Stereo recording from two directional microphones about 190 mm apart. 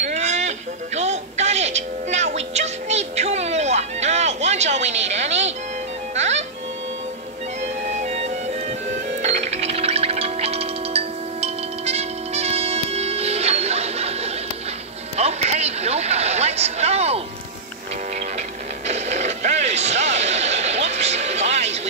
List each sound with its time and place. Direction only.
0.0 s music: 35° right (ahead or behind)
8.0 s music: 35° right (ahead or behind)
15.1 s a sound: 35° right (ahead or behind)
18.9 s mechanisms: 35° right (ahead or behind)